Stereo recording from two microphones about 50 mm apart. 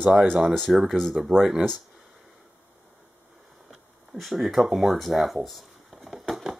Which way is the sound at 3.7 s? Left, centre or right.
Centre.